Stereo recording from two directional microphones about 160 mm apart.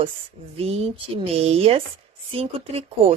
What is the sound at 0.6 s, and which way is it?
A woman's voice, 40° right (ahead or behind).